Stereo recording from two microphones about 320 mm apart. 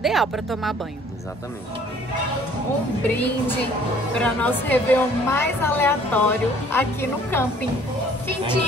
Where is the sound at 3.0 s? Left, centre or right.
Centre.